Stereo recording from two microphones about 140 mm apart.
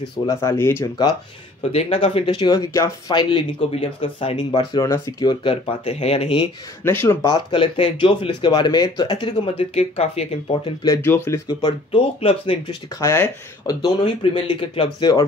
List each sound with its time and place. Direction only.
0.3 s speech: 20° left (ahead or behind)
1.6 s speech: 45° left (ahead or behind)
4.5 s speech: 30° left (ahead or behind)
6.8 s speech: 15° left (ahead or behind)
7.3 s speech: 40° left (ahead or behind)
11.0 s speech: 15° left (ahead or behind)
11.4 s speech: 35° left (ahead or behind)
13.0 s speech: 20° left (ahead or behind)
13.8 s speech: 35° left (ahead or behind)